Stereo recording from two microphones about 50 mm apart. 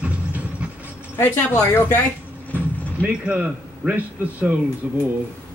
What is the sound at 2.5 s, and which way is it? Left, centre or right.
A man's voice, right.